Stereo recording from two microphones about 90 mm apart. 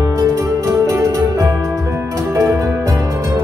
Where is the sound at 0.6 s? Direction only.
40° right (ahead or behind).